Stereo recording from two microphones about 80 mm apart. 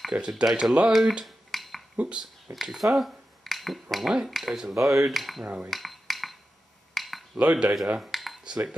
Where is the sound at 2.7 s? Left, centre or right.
Centre.